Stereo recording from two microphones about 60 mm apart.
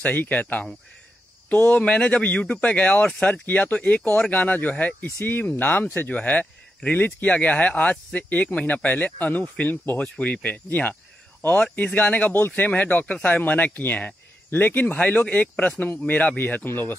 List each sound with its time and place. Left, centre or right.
0.0 s speech: left